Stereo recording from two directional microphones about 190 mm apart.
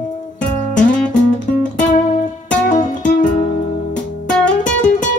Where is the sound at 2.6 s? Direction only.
40° left (ahead or behind).